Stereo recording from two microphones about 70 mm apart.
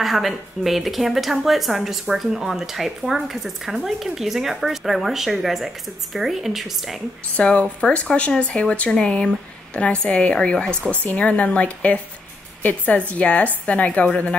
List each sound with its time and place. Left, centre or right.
0.0 s speech: centre
7.3 s a woman's voice: centre